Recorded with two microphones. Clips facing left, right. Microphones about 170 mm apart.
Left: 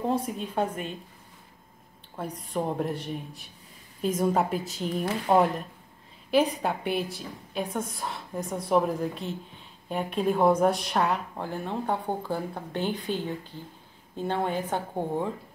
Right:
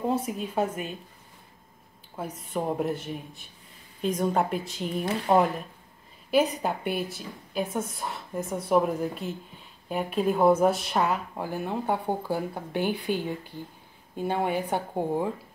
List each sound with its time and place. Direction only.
0.0 s a woman's voice: 5° right (ahead or behind)
2.1 s a woman's voice: 5° right (ahead or behind)